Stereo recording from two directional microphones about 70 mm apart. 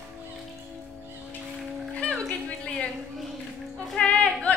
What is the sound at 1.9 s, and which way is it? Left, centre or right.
Music, centre.